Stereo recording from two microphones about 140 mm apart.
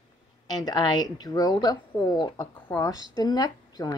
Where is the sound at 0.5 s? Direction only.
30° left (ahead or behind).